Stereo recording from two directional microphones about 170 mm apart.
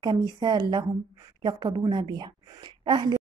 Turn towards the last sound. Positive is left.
turn(degrees=-25)  # may be behind; listen again after turning